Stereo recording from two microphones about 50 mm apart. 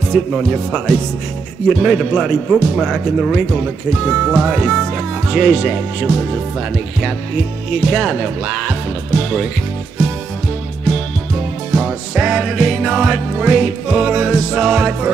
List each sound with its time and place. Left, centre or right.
0.1 s speech: right
1.7 s speech: centre
7.7 s speech: centre
11.7 s music: right